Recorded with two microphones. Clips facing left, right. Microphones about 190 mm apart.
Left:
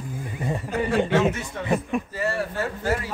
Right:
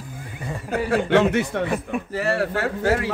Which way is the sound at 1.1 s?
70° right (ahead or behind).